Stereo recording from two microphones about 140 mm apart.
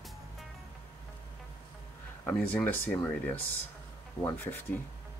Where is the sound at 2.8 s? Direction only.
15° left (ahead or behind).